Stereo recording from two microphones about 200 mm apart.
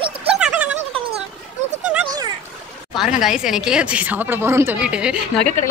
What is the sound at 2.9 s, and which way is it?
A woman's voice, centre (ahead or behind).